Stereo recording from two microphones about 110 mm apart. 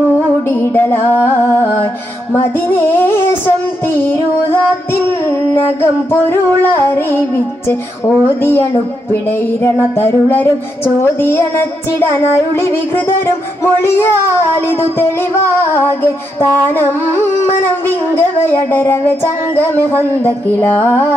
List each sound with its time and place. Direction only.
0.5 s music: 20° left (ahead or behind)
2.3 s child singing: 20° left (ahead or behind)